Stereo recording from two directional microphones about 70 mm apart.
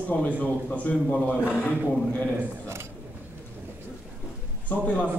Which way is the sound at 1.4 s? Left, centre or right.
Left.